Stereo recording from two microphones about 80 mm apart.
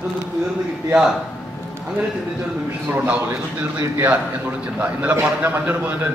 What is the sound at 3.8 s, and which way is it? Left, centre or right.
Speech, right.